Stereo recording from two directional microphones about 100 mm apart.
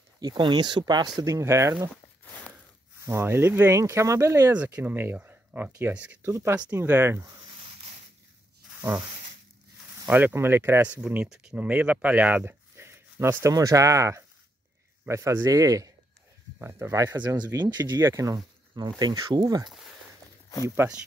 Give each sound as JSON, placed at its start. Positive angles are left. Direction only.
{"t": 0.2, "sound": "speech", "side_deg": -45}
{"t": 1.2, "sound": "speech", "side_deg": -30}
{"t": 3.1, "sound": "speech", "side_deg": -25}
{"t": 4.6, "sound": "speech", "side_deg": -15}
{"t": 10.0, "sound": "speech", "side_deg": -20}
{"t": 16.5, "sound": "speech", "side_deg": -25}
{"t": 17.0, "sound": "speech", "side_deg": -40}
{"t": 17.9, "sound": "speech", "side_deg": -30}
{"t": 20.8, "sound": "speech", "side_deg": -25}